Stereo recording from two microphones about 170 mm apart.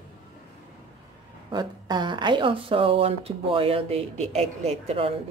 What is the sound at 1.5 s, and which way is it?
Speech, 25° right (ahead or behind).